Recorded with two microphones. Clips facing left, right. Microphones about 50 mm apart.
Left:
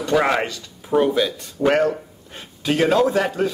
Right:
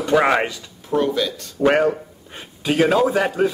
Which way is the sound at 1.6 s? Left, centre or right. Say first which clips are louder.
Right 1 dB; centre.